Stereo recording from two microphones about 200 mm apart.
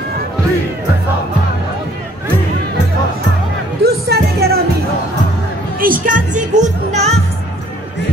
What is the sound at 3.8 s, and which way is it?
Music, 55° right (ahead or behind).